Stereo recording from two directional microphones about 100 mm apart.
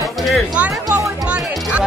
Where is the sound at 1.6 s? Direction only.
10° right (ahead or behind).